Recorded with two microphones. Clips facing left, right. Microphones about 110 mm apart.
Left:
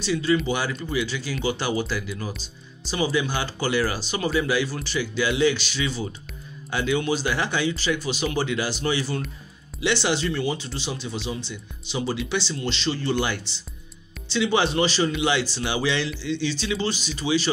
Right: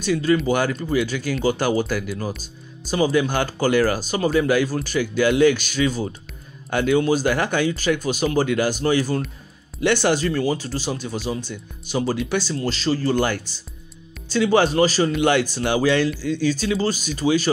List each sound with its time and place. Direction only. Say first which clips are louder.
0.0 s speech: right 3 dB; 50° right (ahead or behind)